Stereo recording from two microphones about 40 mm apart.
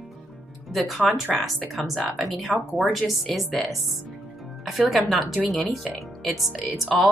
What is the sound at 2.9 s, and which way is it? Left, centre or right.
Speech, centre.